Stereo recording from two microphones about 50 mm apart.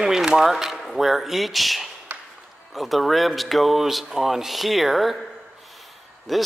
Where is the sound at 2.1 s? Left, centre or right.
Right.